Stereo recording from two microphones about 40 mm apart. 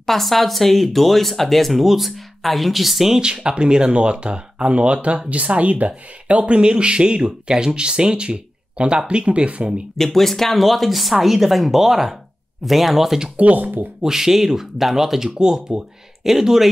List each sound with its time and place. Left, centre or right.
0.0 s speech: centre
3.4 s speech: right
9.9 s speech: centre
13.4 s speech: right
14.0 s speech: centre